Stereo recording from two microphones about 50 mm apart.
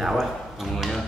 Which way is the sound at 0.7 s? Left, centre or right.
Centre.